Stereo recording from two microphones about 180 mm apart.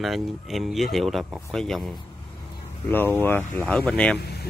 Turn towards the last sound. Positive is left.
turn(degrees=65)  # may be behind; listen again after turning